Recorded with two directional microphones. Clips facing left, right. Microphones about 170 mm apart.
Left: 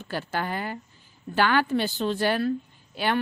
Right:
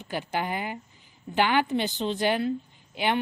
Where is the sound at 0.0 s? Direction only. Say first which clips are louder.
Even; 15° right (ahead or behind).